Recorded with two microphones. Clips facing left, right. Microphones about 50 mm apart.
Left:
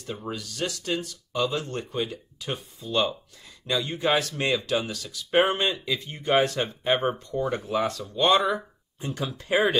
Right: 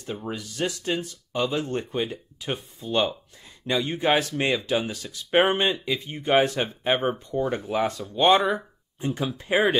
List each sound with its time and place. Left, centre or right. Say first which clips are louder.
0.3 s speech: right 2 dB; right
8.1 s speech: right 2 dB; right